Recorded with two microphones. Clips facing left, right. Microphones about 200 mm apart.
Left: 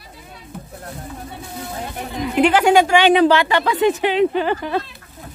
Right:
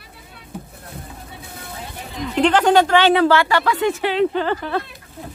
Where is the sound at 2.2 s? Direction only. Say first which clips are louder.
Left 1 dB; 10° left (ahead or behind).